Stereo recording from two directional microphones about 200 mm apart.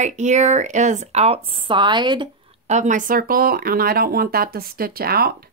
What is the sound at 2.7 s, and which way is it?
Speech, 40° right (ahead or behind).